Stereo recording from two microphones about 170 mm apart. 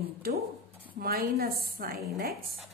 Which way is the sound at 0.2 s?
60° right (ahead or behind).